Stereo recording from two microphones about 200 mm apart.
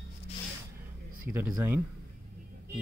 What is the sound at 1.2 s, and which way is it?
Speech, 10° right (ahead or behind).